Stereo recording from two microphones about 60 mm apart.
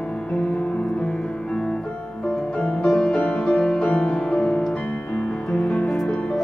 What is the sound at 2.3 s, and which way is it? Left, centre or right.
Music, centre.